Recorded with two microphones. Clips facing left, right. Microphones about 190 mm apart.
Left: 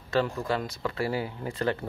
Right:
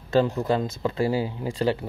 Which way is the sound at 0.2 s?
25° right (ahead or behind).